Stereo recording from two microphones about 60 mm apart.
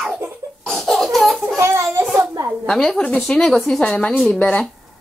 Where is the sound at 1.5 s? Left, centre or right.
Right.